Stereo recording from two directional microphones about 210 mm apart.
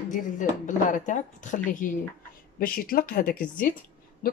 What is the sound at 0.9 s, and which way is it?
Speech, 35° left (ahead or behind).